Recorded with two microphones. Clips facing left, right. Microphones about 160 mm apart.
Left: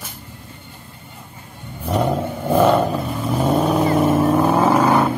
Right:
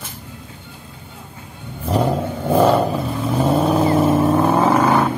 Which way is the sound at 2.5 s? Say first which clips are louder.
Even; 5° right (ahead or behind).